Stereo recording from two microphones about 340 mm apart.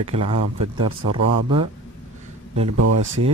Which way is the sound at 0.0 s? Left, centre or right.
Centre.